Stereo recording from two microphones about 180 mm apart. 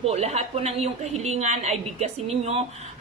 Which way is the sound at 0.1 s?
35° right (ahead or behind).